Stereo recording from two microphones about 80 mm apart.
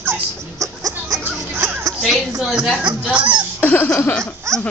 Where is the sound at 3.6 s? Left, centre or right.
Left.